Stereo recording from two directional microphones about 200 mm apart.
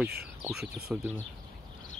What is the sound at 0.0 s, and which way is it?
Speech, 5° right (ahead or behind).